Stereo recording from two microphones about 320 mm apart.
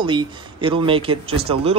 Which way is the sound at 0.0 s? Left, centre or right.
Centre.